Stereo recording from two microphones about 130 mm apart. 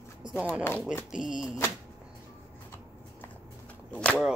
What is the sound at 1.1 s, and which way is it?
Speech, 5° right (ahead or behind).